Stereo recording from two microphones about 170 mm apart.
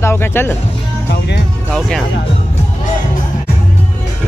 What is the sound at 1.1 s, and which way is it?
Speech, 75° left (ahead or behind).